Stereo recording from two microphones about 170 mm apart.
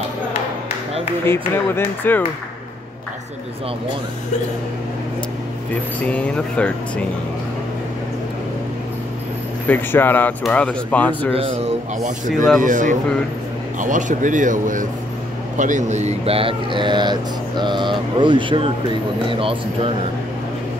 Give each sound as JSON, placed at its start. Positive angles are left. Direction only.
{"t": 1.2, "sound": "speech", "side_deg": 15}
{"t": 6.0, "sound": "speech", "side_deg": 5}
{"t": 9.7, "sound": "speech", "side_deg": 10}
{"t": 11.3, "sound": "a man's voice", "side_deg": -35}